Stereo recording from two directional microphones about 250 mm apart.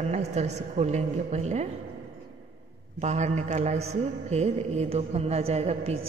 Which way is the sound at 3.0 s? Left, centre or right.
Right.